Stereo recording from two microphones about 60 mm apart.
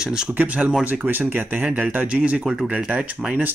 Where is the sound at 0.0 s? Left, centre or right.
Centre.